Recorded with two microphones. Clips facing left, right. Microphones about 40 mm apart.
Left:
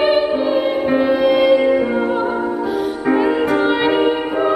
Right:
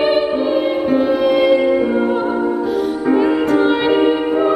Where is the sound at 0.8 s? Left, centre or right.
Centre.